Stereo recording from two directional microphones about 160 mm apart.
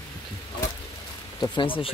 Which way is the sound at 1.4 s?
30° left (ahead or behind).